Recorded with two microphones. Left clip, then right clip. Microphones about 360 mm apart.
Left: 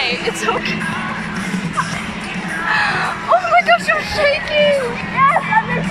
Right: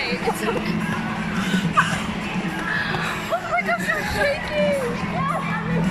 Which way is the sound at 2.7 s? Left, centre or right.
Centre.